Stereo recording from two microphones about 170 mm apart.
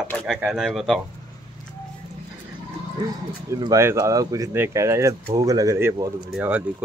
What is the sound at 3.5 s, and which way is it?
Speech, 20° right (ahead or behind).